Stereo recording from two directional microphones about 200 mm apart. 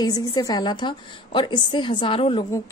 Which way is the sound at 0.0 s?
20° left (ahead or behind).